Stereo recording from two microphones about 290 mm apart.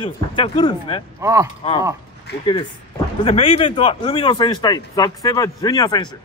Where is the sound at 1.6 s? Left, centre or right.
Centre.